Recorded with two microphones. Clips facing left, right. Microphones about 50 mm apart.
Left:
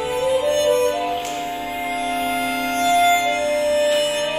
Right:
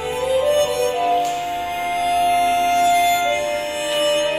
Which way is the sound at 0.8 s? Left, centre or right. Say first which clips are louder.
Right 2 dB; right.